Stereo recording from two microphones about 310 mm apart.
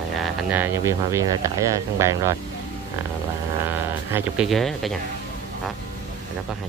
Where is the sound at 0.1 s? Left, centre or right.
Centre.